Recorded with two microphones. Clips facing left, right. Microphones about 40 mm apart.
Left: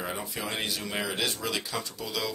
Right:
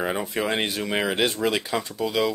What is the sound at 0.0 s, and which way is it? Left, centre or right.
Speech, right.